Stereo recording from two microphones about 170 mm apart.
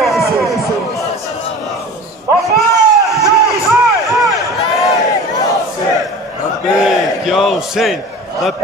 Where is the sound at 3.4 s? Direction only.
Centre (ahead or behind).